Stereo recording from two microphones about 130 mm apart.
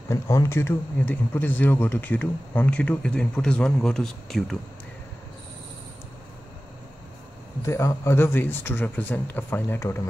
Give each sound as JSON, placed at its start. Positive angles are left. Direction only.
{"t": 0.1, "sound": "a man's voice", "side_deg": 20}
{"t": 7.6, "sound": "a man's voice", "side_deg": 20}